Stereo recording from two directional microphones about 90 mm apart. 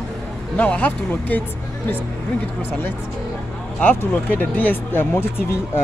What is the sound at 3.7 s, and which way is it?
Speech, 15° left (ahead or behind).